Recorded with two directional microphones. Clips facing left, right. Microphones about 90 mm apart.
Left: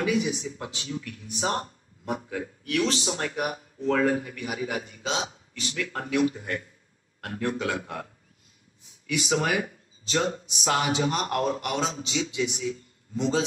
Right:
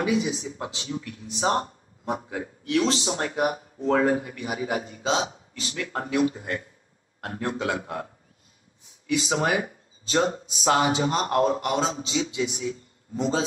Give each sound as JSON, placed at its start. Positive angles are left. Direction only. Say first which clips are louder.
{"t": 0.0, "sound": "a man's voice", "louder": "right 1 dB", "side_deg": -25}